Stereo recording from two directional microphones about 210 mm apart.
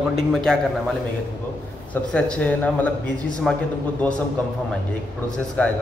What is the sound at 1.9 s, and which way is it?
A man's voice, 5° left (ahead or behind).